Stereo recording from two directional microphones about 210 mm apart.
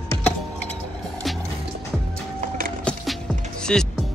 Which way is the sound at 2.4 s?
40° right (ahead or behind).